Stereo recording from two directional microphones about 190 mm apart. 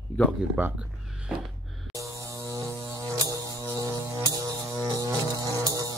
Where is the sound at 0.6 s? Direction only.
10° right (ahead or behind).